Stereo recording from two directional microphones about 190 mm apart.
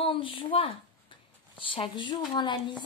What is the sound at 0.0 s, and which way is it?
A woman's voice, 25° left (ahead or behind).